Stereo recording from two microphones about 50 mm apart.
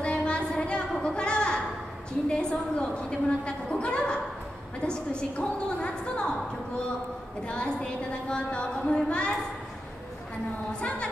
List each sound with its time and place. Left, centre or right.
0.0 s a sound: centre
4.8 s a woman's voice: centre
7.4 s a woman's voice: centre